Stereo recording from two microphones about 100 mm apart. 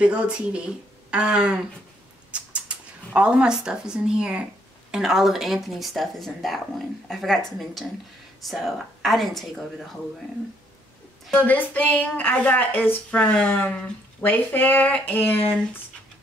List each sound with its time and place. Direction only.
0.0 s speech: 10° right (ahead or behind)
11.3 s a woman's voice: 15° left (ahead or behind)